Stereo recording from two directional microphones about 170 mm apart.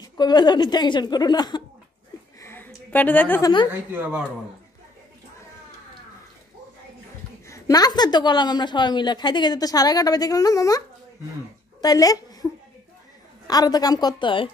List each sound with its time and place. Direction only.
0.0 s a woman's voice: 25° left (ahead or behind)
2.4 s a sound: 10° left (ahead or behind)
3.9 s speech: 10° right (ahead or behind)
7.4 s a woman's voice: 20° left (ahead or behind)
11.8 s a woman's voice: 20° left (ahead or behind)
13.5 s a woman's voice: 20° left (ahead or behind)